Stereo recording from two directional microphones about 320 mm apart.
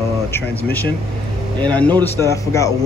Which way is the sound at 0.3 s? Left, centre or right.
Centre.